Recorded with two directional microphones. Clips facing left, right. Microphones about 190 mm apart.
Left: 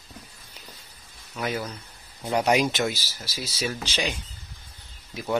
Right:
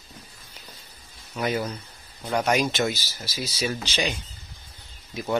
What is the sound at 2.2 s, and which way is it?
Speech, 15° left (ahead or behind).